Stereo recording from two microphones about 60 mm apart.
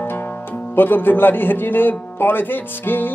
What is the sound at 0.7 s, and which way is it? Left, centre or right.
A man's voice, left.